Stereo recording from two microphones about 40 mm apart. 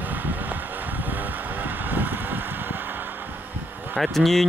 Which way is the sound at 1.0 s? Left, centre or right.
Right.